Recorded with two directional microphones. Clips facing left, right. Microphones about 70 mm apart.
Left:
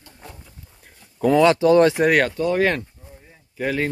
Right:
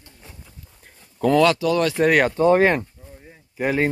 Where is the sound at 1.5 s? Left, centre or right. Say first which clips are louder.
Left 5 dB; left.